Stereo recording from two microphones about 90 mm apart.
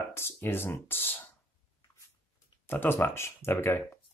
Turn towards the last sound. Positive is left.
turn(degrees=25)  # may be behind; listen again after turning